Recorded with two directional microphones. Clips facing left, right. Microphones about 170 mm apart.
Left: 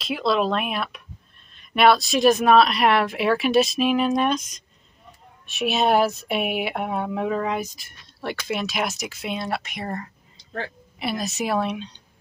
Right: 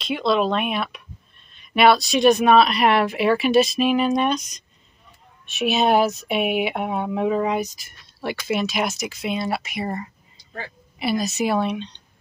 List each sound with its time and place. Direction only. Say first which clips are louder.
0.0 s speech: right 2 dB; centre (ahead or behind)
5.5 s speech: right 2 dB; centre (ahead or behind)
10.3 s a sound: left 5 dB; 65° left (ahead or behind)
11.0 s speech: right 4 dB; centre (ahead or behind)